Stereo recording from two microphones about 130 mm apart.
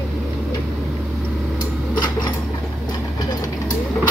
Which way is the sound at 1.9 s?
35° left (ahead or behind).